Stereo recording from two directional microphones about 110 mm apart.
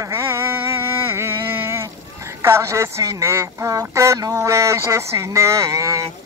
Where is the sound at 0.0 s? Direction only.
25° right (ahead or behind).